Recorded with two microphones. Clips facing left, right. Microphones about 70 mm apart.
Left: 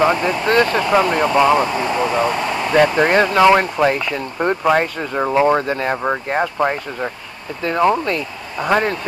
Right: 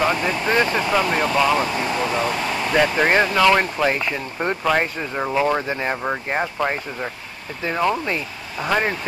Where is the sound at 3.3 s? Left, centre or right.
Centre.